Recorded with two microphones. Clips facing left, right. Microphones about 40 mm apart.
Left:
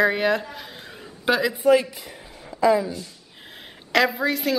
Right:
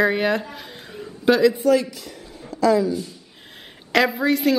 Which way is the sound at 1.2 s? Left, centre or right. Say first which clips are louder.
Right 6 dB; centre.